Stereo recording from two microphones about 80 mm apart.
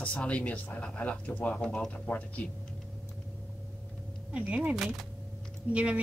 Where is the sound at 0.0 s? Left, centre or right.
Centre.